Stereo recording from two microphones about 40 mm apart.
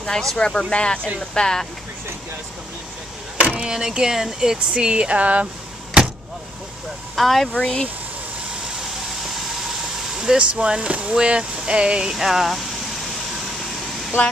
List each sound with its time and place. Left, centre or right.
0.0 s speech: centre
3.6 s speech: centre; by 5.5 s right
7.2 s speech: centre
7.6 s speech: centre
10.1 s vehicle: centre
10.4 s speech: right
12.2 s speech: centre